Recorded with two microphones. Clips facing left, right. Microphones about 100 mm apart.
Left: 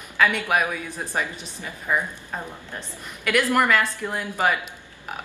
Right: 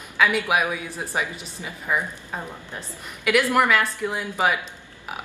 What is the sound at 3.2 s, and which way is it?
Speech, 10° right (ahead or behind).